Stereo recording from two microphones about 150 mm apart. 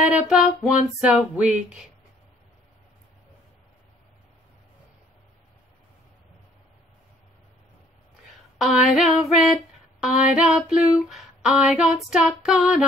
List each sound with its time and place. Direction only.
0.0 s music: 5° right (ahead or behind)
8.5 s female singing: centre (ahead or behind)